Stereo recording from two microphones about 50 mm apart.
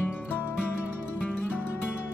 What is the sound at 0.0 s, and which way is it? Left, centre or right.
Music, left.